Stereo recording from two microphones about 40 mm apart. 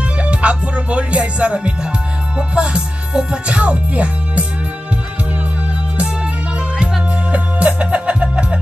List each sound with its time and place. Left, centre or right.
0.2 s music: right
3.5 s speech: right
7.3 s music: right